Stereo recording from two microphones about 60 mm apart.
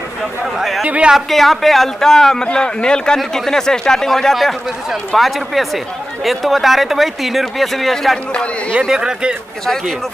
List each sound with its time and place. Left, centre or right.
0.6 s speech: centre
0.8 s speech: right
1.1 s a man's voice: centre
8.8 s speech: centre